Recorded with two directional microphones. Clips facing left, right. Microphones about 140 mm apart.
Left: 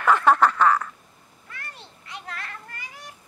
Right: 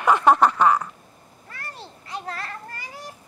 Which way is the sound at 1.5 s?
35° right (ahead or behind).